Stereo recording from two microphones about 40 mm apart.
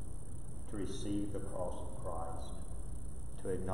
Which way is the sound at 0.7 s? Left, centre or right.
Centre.